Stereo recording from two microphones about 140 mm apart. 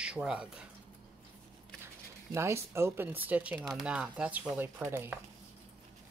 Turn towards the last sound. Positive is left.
turn(degrees=-15)  # may be behind; listen again after turning